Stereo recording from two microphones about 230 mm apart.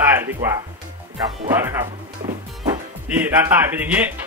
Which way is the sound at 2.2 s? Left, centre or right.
Centre.